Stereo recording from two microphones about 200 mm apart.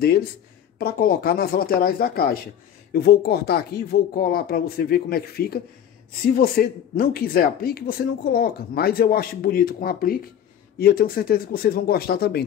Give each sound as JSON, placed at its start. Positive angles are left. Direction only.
{"t": 0.7, "sound": "speech", "side_deg": 50}